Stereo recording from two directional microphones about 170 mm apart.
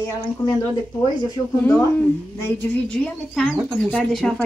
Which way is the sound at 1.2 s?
20° left (ahead or behind).